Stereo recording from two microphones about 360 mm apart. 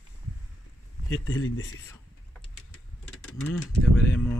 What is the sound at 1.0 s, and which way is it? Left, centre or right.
Speech, left.